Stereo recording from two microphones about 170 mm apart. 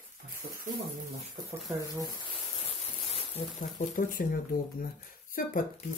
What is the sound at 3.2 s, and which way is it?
Speech, 40° left (ahead or behind).